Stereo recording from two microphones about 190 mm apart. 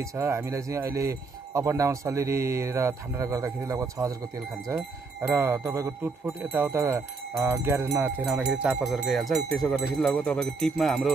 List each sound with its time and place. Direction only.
0.1 s speech: 15° right (ahead or behind); by 11.1 s centre (ahead or behind)